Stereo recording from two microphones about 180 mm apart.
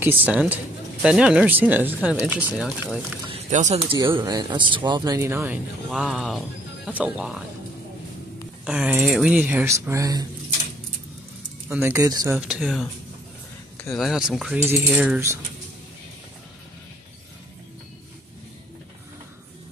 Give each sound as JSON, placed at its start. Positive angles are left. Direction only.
{"t": 0.0, "sound": "speech", "side_deg": -10}
{"t": 3.3, "sound": "speech", "side_deg": -40}
{"t": 5.9, "sound": "coin", "side_deg": 0}
{"t": 8.6, "sound": "speech", "side_deg": -5}
{"t": 11.7, "sound": "speech", "side_deg": -15}
{"t": 12.4, "sound": "coin", "side_deg": -5}
{"t": 13.9, "sound": "coin", "side_deg": 0}